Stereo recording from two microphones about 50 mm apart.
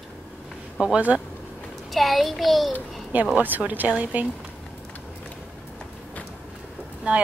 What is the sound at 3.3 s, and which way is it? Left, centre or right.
Speech, right.